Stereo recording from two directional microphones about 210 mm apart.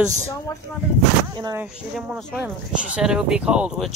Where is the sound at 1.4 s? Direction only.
15° right (ahead or behind).